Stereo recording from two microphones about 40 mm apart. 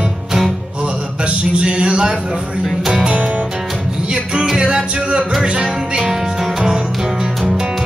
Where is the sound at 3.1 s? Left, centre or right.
Right.